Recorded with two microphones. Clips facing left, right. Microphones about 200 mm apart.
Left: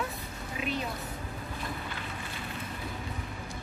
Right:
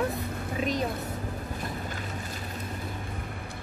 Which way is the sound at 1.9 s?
40° right (ahead or behind).